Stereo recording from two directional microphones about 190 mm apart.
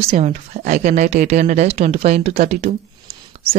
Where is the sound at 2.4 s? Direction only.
40° right (ahead or behind).